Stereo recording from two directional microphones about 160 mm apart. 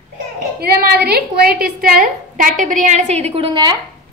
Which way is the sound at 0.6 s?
75° right (ahead or behind).